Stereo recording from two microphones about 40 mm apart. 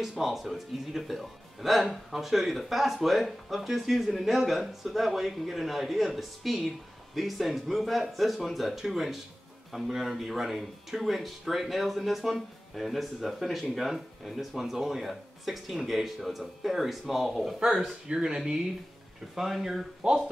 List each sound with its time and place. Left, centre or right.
0.2 s speech: centre
17.6 s speech: centre